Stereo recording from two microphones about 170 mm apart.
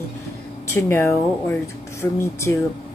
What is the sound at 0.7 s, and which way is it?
Speech, 15° left (ahead or behind).